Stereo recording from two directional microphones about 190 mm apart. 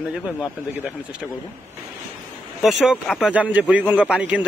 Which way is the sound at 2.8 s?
Centre (ahead or behind).